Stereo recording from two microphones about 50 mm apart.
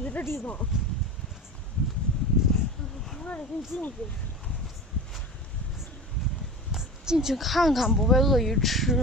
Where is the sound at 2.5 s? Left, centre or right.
Centre.